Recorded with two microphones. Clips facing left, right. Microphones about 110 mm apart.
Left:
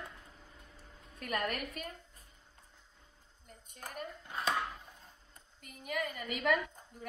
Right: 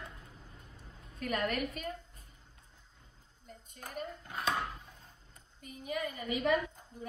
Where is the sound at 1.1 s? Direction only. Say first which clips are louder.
Right 2 dB; 50° left (ahead or behind).